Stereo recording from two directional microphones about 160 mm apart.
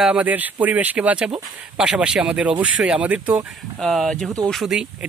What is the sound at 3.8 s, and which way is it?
Speech, centre (ahead or behind).